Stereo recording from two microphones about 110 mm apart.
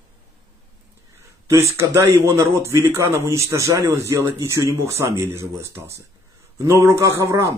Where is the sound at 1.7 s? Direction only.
25° right (ahead or behind).